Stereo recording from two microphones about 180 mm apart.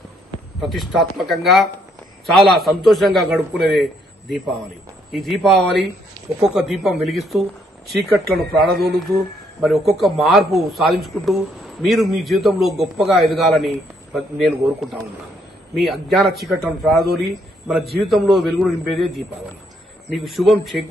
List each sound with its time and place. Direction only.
0.6 s a man's voice: centre (ahead or behind)
8.7 s speech: 60° right (ahead or behind)
9.9 s a man's voice: centre (ahead or behind)